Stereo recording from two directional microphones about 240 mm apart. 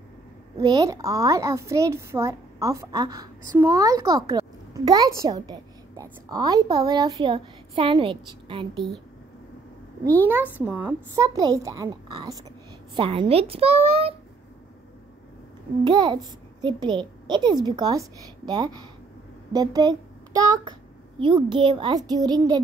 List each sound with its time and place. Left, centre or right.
0.6 s a woman's voice: centre
8.7 s a woman's voice: centre
10.2 s a woman's voice: centre; by 14.1 s right
15.8 s a woman's voice: centre